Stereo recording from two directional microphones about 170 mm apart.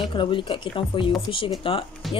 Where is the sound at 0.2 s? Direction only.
30° left (ahead or behind).